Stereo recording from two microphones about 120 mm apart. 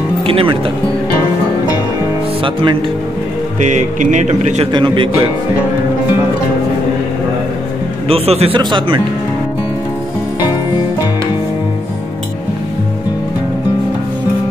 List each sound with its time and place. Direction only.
0.2 s speech: 50° right (ahead or behind)
2.4 s speech: 45° right (ahead or behind)
3.5 s speech: 90° right; by 4.6 s 75° right (ahead or behind)
4.7 s speech: 45° right (ahead or behind)
8.1 s speech: 55° right (ahead or behind)
8.5 s speech: 40° right (ahead or behind)